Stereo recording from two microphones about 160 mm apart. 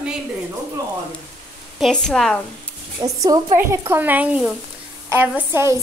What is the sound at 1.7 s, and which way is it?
Speech, centre (ahead or behind).